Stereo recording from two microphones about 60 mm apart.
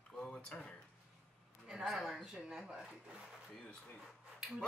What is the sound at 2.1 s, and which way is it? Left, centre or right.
Speech, centre.